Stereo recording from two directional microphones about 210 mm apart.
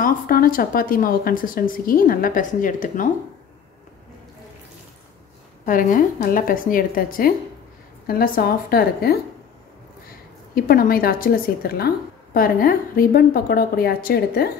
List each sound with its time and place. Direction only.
0.0 s a woman's voice: 45° left (ahead or behind)
5.7 s a woman's voice: 40° left (ahead or behind)